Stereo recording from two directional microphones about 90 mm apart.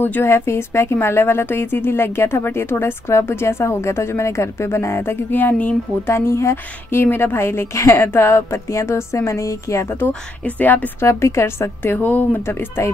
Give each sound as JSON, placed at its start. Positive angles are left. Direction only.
{"t": 0.0, "sound": "speech", "side_deg": 25}
{"t": 11.1, "sound": "speech", "side_deg": 30}